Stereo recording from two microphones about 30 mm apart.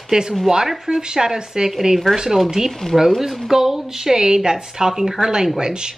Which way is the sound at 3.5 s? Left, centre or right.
Centre.